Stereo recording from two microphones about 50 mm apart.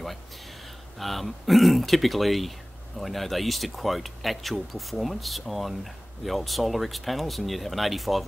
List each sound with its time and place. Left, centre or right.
0.9 s speech: centre